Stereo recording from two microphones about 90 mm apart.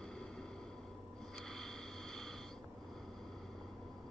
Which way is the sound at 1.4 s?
5° left (ahead or behind).